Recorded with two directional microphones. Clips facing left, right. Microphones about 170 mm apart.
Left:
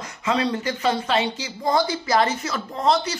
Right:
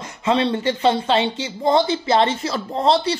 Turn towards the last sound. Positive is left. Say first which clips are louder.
# right 3 dB
turn(degrees=-30)  # may be behind; listen again after turning